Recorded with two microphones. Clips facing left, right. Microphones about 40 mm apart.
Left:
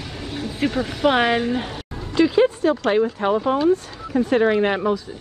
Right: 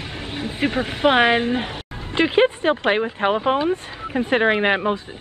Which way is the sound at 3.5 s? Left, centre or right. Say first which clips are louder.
Left 3 dB; right.